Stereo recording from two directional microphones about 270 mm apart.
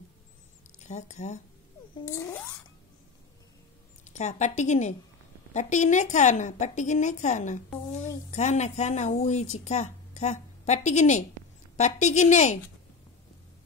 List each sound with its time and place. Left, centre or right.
0.8 s a woman's voice: left
2.1 s speech: centre
4.0 s a woman's voice: left